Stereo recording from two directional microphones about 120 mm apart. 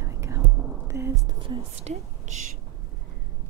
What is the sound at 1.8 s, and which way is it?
Speech, 75° right (ahead or behind).